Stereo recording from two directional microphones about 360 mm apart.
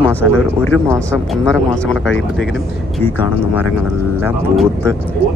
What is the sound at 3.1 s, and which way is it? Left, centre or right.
Speech, left.